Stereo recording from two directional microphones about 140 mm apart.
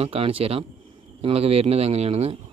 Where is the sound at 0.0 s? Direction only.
45° right (ahead or behind).